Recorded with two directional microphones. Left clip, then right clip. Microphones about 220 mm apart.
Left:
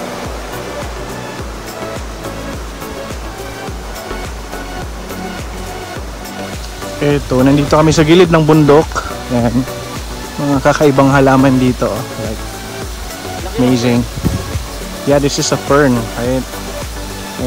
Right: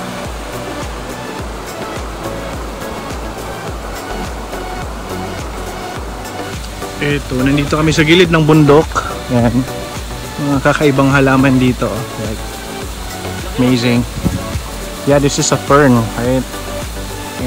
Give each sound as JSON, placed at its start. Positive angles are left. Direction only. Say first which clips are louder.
{"t": 7.0, "sound": "speech", "louder": "left 4 dB", "side_deg": 20}
{"t": 10.5, "sound": "speech", "louder": "left 2 dB", "side_deg": 10}
{"t": 13.6, "sound": "speech", "louder": "left 1 dB", "side_deg": 10}
{"t": 15.0, "sound": "speech", "louder": "even", "side_deg": 10}